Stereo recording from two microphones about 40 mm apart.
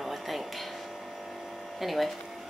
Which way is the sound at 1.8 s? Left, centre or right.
Centre.